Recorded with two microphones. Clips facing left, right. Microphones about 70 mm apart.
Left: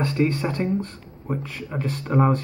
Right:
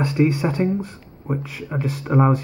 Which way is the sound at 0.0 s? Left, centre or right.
Centre.